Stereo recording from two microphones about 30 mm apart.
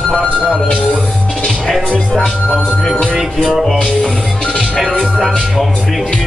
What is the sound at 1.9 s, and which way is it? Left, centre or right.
Speech, centre.